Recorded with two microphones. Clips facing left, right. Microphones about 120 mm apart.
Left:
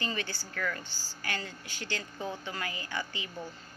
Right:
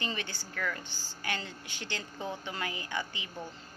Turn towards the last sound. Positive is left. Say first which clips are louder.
# even
turn(degrees=-20)  # may be behind; listen again after turning